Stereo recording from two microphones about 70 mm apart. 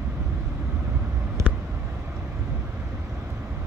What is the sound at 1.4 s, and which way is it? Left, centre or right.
Vehicle, right.